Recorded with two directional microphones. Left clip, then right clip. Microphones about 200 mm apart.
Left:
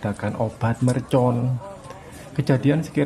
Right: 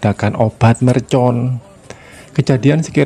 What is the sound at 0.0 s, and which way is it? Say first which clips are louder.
Speech: right 10 dB; 40° right (ahead or behind).